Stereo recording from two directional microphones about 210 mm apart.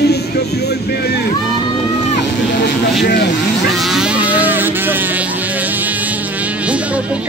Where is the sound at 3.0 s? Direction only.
50° left (ahead or behind).